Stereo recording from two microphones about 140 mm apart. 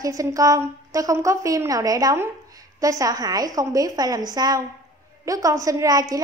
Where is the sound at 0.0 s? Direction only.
25° right (ahead or behind).